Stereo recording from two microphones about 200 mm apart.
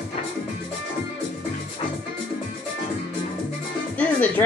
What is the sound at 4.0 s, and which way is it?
Music, 5° left (ahead or behind).